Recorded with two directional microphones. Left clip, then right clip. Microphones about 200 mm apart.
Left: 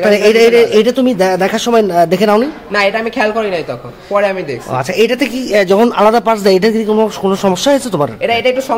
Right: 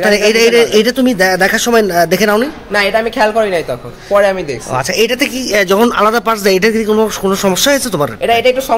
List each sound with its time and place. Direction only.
0.0 s speech: 5° right (ahead or behind)
2.7 s a woman's voice: 40° right (ahead or behind)
4.7 s speech: centre (ahead or behind)
8.3 s a woman's voice: 35° right (ahead or behind)